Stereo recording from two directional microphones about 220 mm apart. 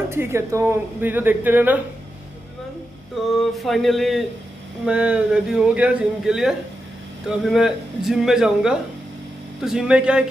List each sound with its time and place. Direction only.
0.1 s a woman's voice: 10° right (ahead or behind)
3.5 s a man's voice: centre (ahead or behind)